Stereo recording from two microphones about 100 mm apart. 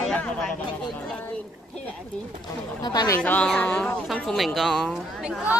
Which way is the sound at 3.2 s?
10° left (ahead or behind).